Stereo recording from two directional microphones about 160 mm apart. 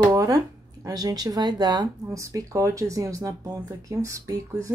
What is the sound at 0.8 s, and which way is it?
Speech, 25° right (ahead or behind).